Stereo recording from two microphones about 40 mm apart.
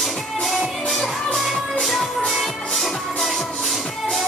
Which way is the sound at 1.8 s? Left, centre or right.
Centre.